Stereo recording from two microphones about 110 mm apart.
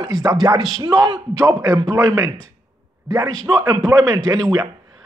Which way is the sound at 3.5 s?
35° right (ahead or behind).